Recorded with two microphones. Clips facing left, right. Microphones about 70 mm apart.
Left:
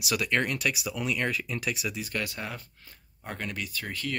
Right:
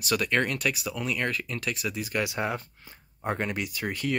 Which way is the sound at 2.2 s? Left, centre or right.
Right.